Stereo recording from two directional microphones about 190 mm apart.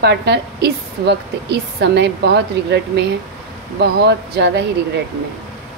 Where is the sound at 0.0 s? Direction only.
65° right (ahead or behind).